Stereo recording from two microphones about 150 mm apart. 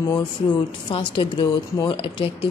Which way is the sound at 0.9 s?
35° left (ahead or behind).